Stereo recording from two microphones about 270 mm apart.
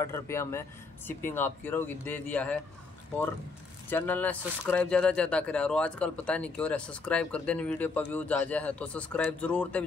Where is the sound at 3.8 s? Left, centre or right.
Centre.